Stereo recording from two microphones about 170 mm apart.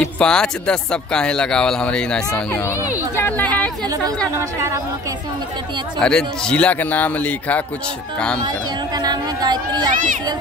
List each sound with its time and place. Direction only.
0.0 s speech: 5° left (ahead or behind)
2.6 s a man's voice: 15° left (ahead or behind)
3.8 s speech: 20° right (ahead or behind)
5.9 s a man's voice: 5° left (ahead or behind)
8.4 s speech: 25° right (ahead or behind)